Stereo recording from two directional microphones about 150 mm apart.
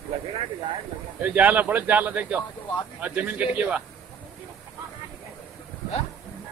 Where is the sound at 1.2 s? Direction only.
10° right (ahead or behind).